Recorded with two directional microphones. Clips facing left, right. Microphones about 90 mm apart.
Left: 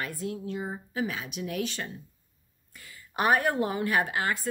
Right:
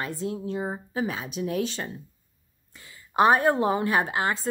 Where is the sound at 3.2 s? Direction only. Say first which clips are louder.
Right 5 dB; 25° right (ahead or behind).